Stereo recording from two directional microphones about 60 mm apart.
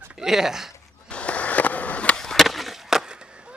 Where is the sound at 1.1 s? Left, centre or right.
Left.